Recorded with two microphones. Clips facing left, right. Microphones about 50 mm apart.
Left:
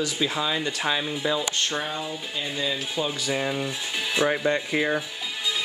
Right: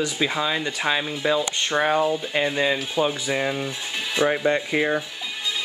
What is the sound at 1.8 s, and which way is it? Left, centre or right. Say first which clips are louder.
Speech: right 10 dB; right.